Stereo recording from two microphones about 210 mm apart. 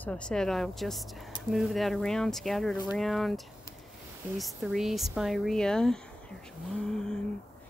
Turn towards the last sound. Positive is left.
turn(degrees=5)  # may be behind; listen again after turning